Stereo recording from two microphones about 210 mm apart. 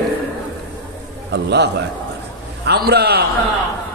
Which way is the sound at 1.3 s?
55° right (ahead or behind).